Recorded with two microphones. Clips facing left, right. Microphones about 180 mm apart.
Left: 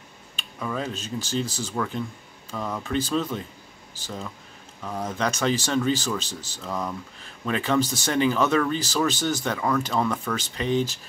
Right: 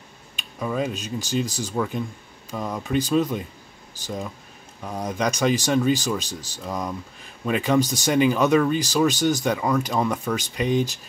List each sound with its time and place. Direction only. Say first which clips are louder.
0.4 s speech: right 4 dB; 15° right (ahead or behind)